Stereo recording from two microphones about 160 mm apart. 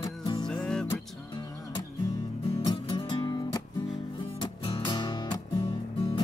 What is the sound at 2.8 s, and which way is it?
Music, 30° left (ahead or behind).